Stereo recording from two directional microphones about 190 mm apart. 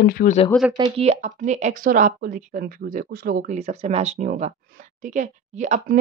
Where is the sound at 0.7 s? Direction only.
30° right (ahead or behind); by 3.5 s 50° right (ahead or behind).